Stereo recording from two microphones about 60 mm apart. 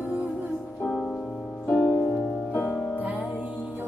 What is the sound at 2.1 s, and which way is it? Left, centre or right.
Music, centre.